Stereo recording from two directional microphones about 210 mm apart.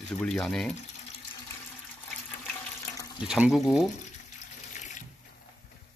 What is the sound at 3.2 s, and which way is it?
Speech, 5° right (ahead or behind).